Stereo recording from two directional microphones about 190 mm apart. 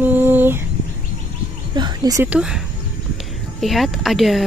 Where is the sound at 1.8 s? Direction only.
20° right (ahead or behind).